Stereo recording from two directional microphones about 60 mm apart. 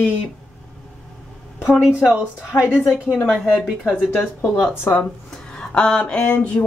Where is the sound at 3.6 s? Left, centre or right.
Centre.